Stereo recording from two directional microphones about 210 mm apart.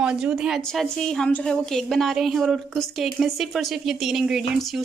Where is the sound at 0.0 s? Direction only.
5° right (ahead or behind).